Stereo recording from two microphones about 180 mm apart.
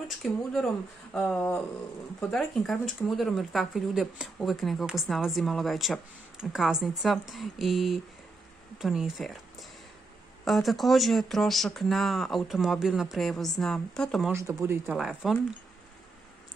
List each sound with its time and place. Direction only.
0.1 s speech: centre (ahead or behind)
14.3 s speech: 15° right (ahead or behind)
15.0 s speech: centre (ahead or behind)